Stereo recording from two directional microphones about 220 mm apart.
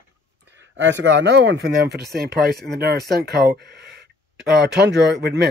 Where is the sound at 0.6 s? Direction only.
55° right (ahead or behind).